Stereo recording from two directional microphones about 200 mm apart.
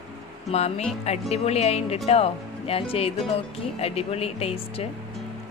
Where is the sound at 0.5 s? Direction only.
30° left (ahead or behind).